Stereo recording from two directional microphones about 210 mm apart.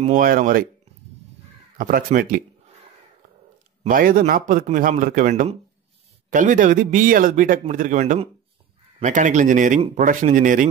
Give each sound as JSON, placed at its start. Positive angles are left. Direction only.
{"t": 0.0, "sound": "speech", "side_deg": -40}
{"t": 1.8, "sound": "speech", "side_deg": -40}
{"t": 3.8, "sound": "a man's voice", "side_deg": -40}